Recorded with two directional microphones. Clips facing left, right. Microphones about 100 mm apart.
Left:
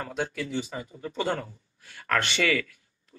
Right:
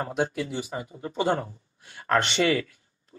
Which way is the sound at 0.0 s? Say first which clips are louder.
Right 4 dB; 20° right (ahead or behind).